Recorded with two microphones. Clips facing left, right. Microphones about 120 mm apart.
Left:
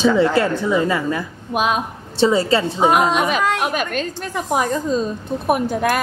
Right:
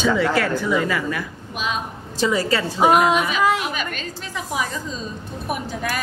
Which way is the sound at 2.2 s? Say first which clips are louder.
Left 5 dB; 25° left (ahead or behind).